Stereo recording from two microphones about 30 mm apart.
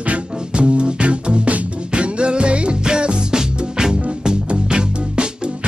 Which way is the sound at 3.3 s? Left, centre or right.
Right.